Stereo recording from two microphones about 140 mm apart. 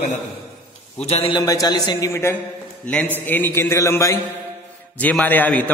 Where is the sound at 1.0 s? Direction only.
45° left (ahead or behind).